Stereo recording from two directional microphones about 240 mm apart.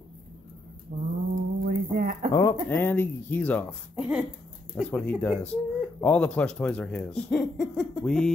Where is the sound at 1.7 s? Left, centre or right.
Right.